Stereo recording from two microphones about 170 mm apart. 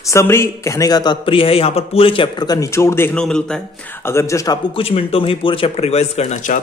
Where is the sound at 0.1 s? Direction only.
15° left (ahead or behind).